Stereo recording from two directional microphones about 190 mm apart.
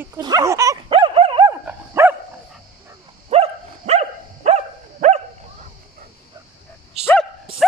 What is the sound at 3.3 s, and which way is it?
Dog, 35° right (ahead or behind).